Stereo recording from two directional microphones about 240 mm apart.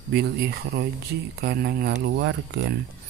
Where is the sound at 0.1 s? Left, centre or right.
Right.